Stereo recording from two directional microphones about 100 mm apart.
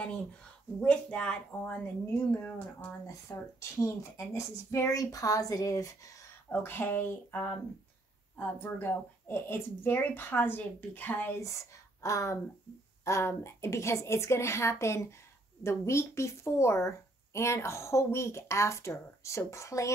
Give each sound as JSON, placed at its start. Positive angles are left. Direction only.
{"t": 0.7, "sound": "speech", "side_deg": 10}
{"t": 2.1, "sound": "speech", "side_deg": 20}
{"t": 6.5, "sound": "speech", "side_deg": 20}
{"t": 11.4, "sound": "speech", "side_deg": 30}